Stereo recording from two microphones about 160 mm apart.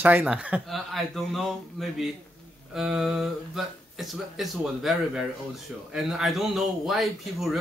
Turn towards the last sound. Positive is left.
turn(degrees=0)  # may be behind; listen again after turning